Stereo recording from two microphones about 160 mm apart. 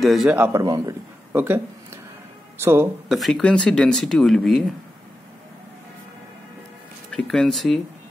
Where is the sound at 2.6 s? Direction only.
15° right (ahead or behind).